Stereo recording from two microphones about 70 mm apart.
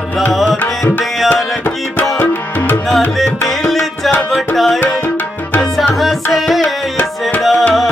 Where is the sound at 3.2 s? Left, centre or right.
Centre.